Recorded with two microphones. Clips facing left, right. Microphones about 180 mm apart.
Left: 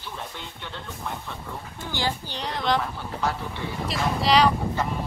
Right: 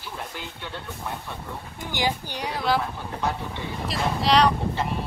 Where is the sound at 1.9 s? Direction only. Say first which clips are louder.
Right 2 dB; 15° right (ahead or behind).